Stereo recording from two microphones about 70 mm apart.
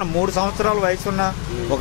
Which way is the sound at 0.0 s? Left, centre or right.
Left.